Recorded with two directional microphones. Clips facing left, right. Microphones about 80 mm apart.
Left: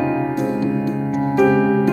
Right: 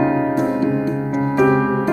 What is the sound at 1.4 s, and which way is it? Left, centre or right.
Music, right.